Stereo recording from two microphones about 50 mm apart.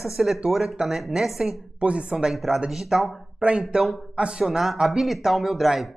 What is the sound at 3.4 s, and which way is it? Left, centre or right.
Speech, right.